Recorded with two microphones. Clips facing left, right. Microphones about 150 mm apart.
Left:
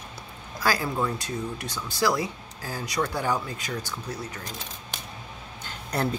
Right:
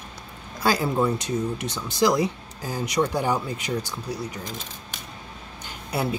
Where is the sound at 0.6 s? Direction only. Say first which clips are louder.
Right 4 dB; 20° right (ahead or behind).